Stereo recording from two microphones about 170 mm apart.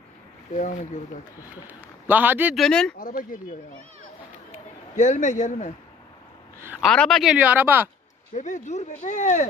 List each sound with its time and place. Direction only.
1.4 s a man's voice: 10° right (ahead or behind)
2.5 s speech: 5° left (ahead or behind)
3.0 s speech: 50° left (ahead or behind)
4.9 s speech: 45° left (ahead or behind)
6.8 s speech: centre (ahead or behind)
8.4 s speech: 45° left (ahead or behind)